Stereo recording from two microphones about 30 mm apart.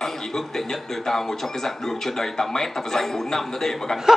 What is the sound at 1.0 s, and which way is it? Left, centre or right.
Speech, centre.